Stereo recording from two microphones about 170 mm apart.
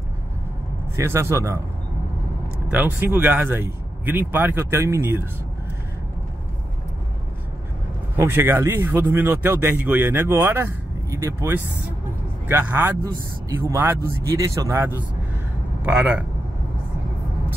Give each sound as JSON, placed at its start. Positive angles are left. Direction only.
{"t": 0.9, "sound": "speech", "side_deg": -15}
{"t": 2.7, "sound": "speech", "side_deg": -10}
{"t": 8.2, "sound": "a man's voice", "side_deg": -15}